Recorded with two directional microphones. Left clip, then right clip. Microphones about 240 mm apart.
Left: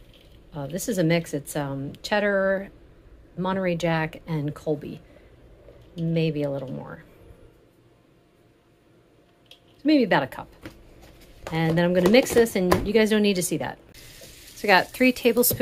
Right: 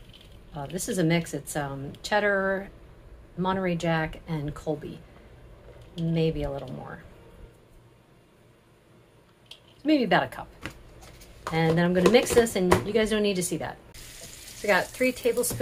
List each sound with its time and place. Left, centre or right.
0.6 s speech: left
6.1 s speech: left
9.8 s speech: left
11.4 s speech: left